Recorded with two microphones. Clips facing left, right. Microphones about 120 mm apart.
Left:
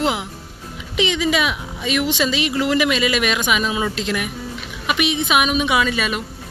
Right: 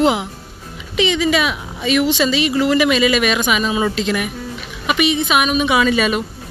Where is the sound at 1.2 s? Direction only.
5° left (ahead or behind).